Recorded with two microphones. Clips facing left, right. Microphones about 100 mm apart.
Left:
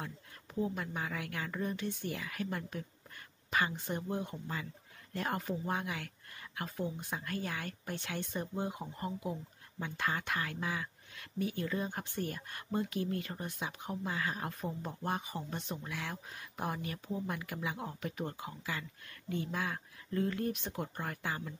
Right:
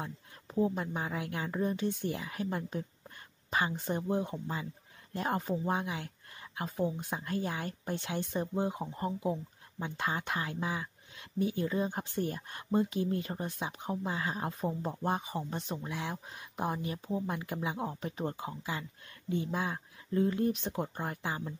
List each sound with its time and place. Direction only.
0.0 s speech: 30° right (ahead or behind)
3.9 s speech: 25° right (ahead or behind)